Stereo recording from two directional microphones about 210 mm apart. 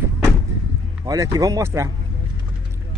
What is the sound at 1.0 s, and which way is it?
Speech, 15° right (ahead or behind).